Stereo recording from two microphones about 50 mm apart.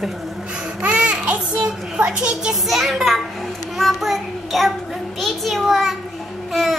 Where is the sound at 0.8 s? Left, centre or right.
Right.